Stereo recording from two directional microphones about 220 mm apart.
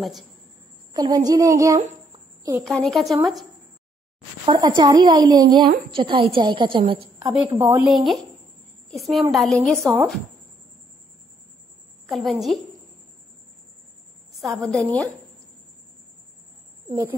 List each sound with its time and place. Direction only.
0.9 s speech: 20° right (ahead or behind)
1.8 s a sound: 35° right (ahead or behind)
2.6 s speech: centre (ahead or behind)
4.5 s speech: 20° right (ahead or behind)
7.5 s speech: 10° right (ahead or behind)
12.1 s speech: centre (ahead or behind)
14.3 s a woman's voice: centre (ahead or behind)